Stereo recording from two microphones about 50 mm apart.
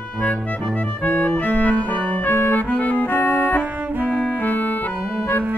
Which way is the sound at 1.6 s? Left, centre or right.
Left.